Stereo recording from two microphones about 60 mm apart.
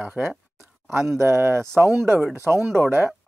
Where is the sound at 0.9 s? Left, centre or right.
Right.